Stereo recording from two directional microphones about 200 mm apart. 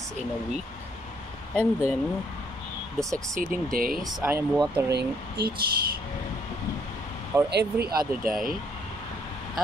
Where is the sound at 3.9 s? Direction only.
5° right (ahead or behind).